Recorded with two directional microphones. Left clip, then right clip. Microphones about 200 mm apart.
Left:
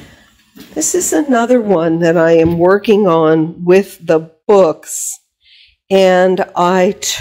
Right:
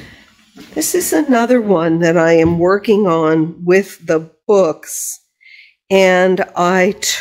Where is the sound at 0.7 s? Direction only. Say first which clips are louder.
Left 1 dB; centre (ahead or behind).